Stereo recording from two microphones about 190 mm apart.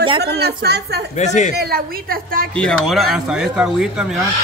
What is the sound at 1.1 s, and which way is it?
Speech, 40° left (ahead or behind).